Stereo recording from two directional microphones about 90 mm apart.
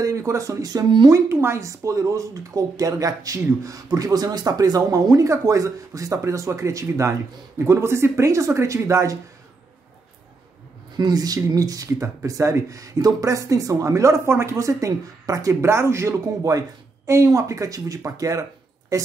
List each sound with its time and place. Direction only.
0.0 s speech: 35° right (ahead or behind)
1.0 s speech: 30° right (ahead or behind)
11.0 s speech: 45° right (ahead or behind)